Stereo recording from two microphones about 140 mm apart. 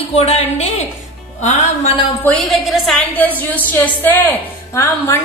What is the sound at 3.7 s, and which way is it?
A woman's voice, 15° left (ahead or behind).